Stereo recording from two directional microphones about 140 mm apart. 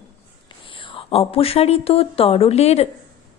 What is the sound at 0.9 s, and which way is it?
A woman's voice, 40° left (ahead or behind).